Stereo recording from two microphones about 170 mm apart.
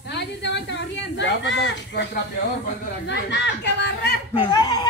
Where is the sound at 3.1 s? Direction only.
90° left.